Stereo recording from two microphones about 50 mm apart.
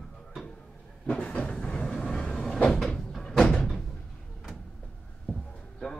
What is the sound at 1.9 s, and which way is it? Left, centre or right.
Vehicle, centre.